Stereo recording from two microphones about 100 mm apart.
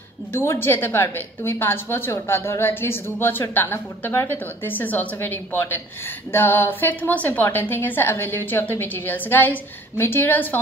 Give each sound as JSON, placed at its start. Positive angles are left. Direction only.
{"t": 0.3, "sound": "a woman's voice", "side_deg": 25}